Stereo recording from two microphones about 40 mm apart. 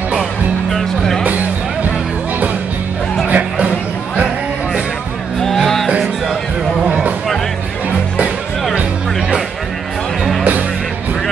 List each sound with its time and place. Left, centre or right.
0.7 s music: centre
3.3 s music: right
5.6 s music: centre